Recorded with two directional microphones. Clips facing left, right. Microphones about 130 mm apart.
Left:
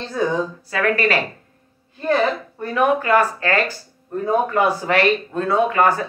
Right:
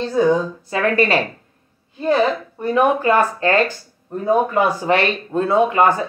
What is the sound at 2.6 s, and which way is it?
Speech, 25° right (ahead or behind).